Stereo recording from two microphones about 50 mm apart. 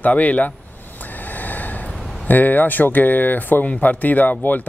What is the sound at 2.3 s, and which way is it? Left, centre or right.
Speech, left.